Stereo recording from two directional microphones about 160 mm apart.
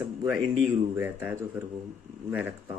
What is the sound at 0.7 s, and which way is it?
Speech, 10° right (ahead or behind).